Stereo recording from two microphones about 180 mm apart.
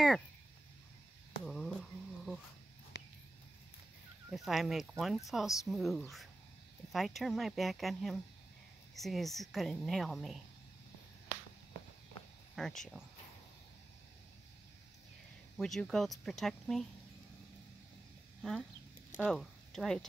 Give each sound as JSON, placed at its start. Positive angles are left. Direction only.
{"t": 1.4, "sound": "a sound", "side_deg": 5}
{"t": 2.9, "sound": "a sound", "side_deg": 70}
{"t": 4.3, "sound": "a woman's voice", "side_deg": 0}
{"t": 12.5, "sound": "a woman's voice", "side_deg": 0}
{"t": 15.5, "sound": "a woman's voice", "side_deg": 0}
{"t": 18.4, "sound": "speech", "side_deg": 0}